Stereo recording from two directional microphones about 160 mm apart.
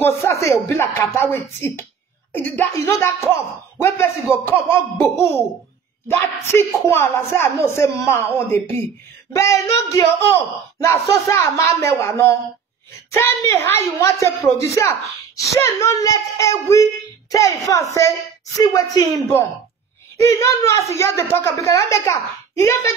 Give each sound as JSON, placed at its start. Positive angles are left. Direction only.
{"t": 0.0, "sound": "a woman's voice", "side_deg": 15}
{"t": 20.2, "sound": "speech", "side_deg": 15}